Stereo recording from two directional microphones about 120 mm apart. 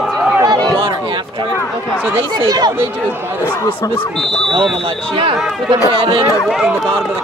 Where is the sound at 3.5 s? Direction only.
25° left (ahead or behind).